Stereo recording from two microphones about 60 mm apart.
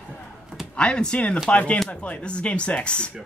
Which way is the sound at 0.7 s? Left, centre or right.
Centre.